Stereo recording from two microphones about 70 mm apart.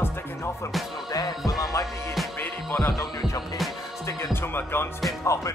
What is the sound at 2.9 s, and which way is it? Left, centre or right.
Speech, left.